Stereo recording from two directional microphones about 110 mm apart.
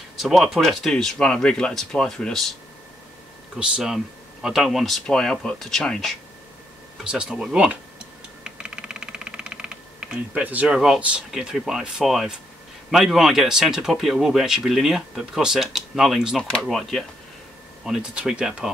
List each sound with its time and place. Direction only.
0.2 s speech: centre (ahead or behind)
3.5 s speech: 5° right (ahead or behind)
8.5 s a sound: 10° right (ahead or behind)
12.9 s speech: 5° right (ahead or behind)